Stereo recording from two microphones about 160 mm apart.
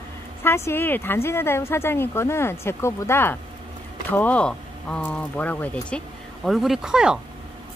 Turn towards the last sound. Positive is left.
turn(degrees=-5)  # may be behind; listen again after turning